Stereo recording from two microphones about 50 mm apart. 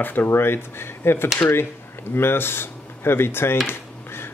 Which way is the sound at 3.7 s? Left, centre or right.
Left.